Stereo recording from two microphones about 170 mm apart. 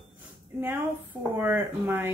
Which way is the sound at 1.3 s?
10° right (ahead or behind).